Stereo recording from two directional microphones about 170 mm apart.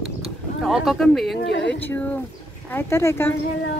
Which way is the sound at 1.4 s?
90° left.